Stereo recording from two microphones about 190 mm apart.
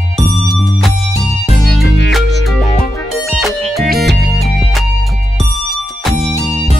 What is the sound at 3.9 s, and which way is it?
Music, 55° right (ahead or behind).